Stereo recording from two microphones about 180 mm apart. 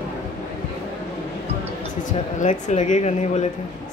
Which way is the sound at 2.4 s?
40° left (ahead or behind).